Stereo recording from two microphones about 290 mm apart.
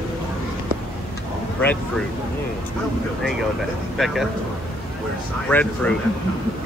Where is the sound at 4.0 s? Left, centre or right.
Centre.